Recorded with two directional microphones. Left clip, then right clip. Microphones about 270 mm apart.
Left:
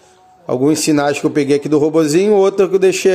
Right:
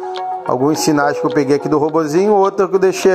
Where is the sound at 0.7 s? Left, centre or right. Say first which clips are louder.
Even; centre.